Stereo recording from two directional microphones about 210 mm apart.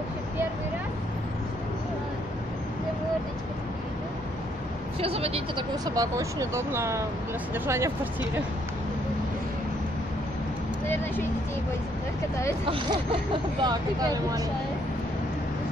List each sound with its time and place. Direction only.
5.0 s speech: 30° right (ahead or behind); by 8.1 s 10° right (ahead or behind)
12.6 s speech: 25° right (ahead or behind)